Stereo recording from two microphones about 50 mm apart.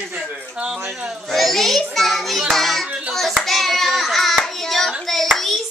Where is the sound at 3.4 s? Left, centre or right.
Centre.